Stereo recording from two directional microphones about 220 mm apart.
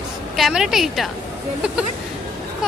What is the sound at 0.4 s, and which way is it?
Speech, centre (ahead or behind).